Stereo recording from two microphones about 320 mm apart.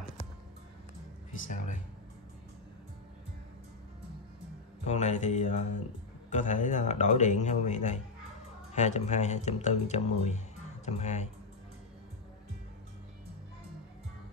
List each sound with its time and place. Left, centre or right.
1.4 s a man's voice: left
4.8 s a man's voice: left